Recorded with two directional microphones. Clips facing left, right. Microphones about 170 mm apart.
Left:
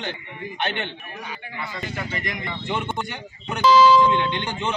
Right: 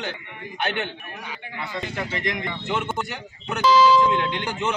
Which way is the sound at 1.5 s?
20° right (ahead or behind).